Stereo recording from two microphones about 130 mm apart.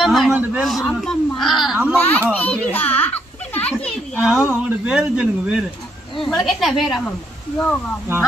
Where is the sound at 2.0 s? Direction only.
15° left (ahead or behind).